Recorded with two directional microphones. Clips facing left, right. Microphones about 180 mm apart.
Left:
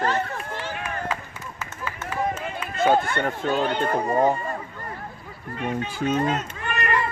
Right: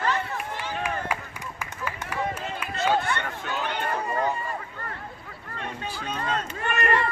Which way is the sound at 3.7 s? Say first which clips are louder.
Left 6 dB; 35° left (ahead or behind).